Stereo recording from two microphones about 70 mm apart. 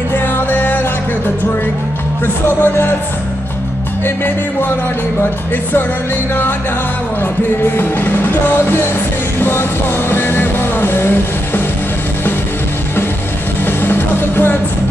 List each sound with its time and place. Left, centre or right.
0.1 s music: left
4.0 s music: left
7.6 s music: left
13.7 s music: left